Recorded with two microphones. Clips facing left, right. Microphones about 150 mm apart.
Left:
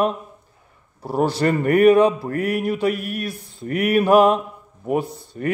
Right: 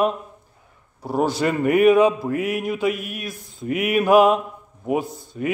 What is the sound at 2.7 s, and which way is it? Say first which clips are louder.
Speech: left 2 dB; 35° left (ahead or behind).